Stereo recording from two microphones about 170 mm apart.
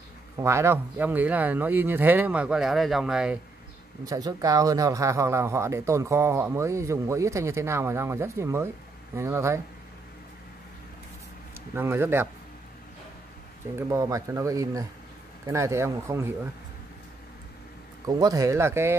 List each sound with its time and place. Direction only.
0.4 s speech: 15° right (ahead or behind)
4.0 s speech: 20° right (ahead or behind)
11.7 s speech: 15° right (ahead or behind)
13.7 s speech: 20° right (ahead or behind)
18.0 s speech: 20° right (ahead or behind)